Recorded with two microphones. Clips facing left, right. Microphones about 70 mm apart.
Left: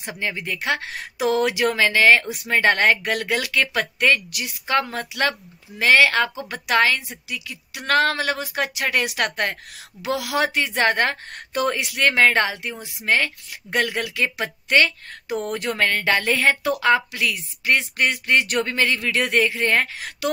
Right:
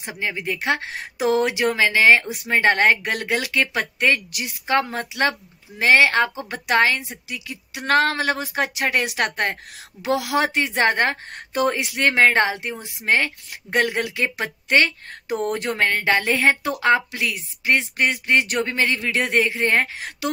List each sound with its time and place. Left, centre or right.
0.1 s a woman's voice: centre